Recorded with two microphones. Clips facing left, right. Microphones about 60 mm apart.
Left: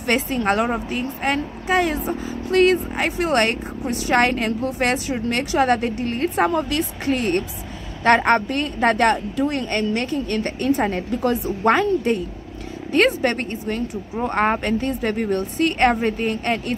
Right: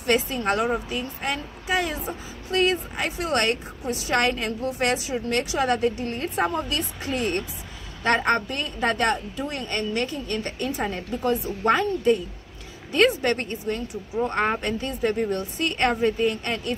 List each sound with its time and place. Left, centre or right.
0.0 s a woman's voice: left
12.9 s a woman's voice: left